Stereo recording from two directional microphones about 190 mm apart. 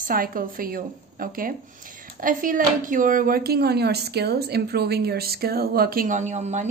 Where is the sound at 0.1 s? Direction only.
50° right (ahead or behind).